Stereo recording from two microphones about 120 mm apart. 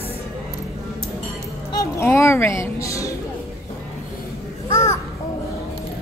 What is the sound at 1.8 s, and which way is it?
A woman's voice, 25° left (ahead or behind).